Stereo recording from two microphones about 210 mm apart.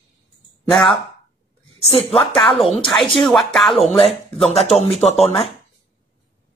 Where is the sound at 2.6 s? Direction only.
25° left (ahead or behind).